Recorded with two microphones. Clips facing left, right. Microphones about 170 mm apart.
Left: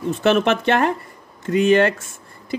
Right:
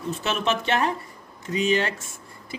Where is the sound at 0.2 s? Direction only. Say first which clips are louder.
Left 10 dB; 60° left (ahead or behind).